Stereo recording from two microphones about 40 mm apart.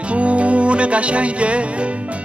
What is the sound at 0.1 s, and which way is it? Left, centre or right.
Music, right.